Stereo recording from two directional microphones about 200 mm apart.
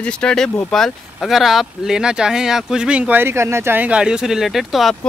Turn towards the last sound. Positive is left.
turn(degrees=0)  # may be behind; listen again after turning